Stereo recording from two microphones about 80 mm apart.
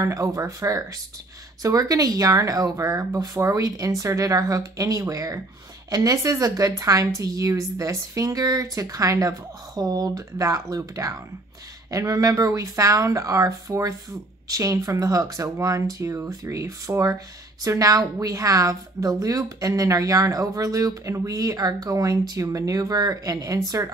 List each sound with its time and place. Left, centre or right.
0.0 s a woman's voice: right
9.8 s a woman's voice: right